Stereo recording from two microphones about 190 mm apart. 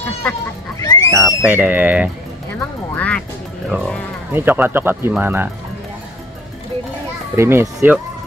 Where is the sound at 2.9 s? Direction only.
5° left (ahead or behind).